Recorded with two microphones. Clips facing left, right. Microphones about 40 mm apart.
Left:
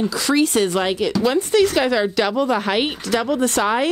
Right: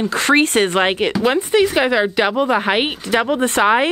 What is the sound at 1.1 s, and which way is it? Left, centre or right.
Speech, right.